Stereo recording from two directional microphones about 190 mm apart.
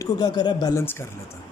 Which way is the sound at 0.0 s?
20° left (ahead or behind).